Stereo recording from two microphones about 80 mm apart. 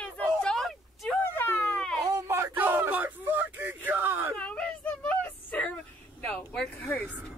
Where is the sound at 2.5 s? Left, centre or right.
Right.